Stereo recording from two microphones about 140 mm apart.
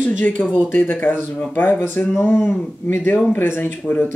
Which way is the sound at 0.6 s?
15° left (ahead or behind).